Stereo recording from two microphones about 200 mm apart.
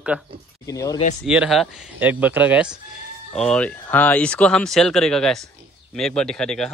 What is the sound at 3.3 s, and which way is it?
Speech, 5° left (ahead or behind).